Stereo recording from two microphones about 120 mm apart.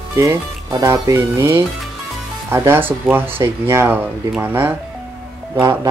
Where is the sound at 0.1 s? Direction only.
25° right (ahead or behind).